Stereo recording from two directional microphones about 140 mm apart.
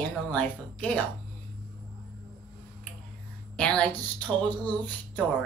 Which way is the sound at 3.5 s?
10° left (ahead or behind).